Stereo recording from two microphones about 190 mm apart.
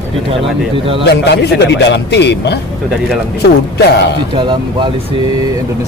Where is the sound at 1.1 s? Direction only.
65° left (ahead or behind).